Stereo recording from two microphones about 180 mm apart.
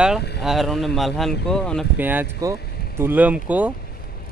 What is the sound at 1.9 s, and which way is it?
A man's voice, 10° right (ahead or behind).